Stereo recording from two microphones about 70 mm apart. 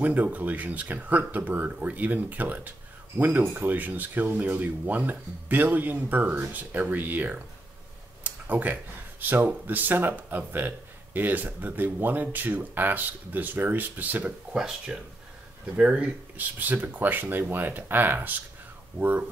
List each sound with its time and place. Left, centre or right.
0.0 s speech: right
8.2 s a sound: right
9.2 s speech: right
14.5 s speech: centre